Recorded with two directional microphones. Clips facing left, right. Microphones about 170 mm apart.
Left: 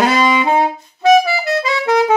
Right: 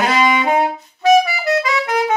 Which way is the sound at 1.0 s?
30° left (ahead or behind).